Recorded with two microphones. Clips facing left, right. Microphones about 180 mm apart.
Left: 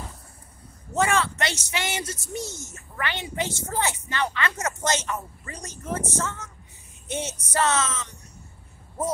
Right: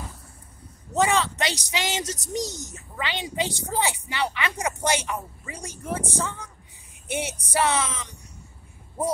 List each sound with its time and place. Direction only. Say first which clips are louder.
0.9 s speech: right 1 dB; 15° right (ahead or behind)